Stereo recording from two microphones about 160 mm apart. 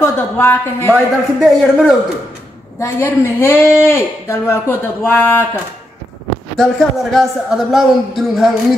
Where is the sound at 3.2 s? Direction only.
15° left (ahead or behind).